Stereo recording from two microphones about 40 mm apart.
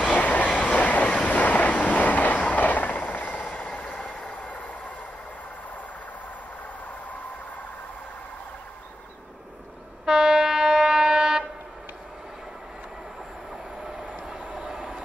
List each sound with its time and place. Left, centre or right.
0.1 s train: left
3.5 s vehicle: left
10.0 s train: centre
13.9 s train: right